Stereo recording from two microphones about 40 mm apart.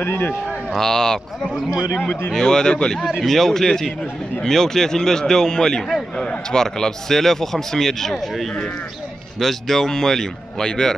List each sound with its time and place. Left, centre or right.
0.0 s speech: left
0.7 s speech: centre
3.2 s speech: centre